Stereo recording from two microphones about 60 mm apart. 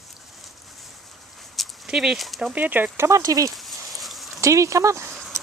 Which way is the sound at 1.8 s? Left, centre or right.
Centre.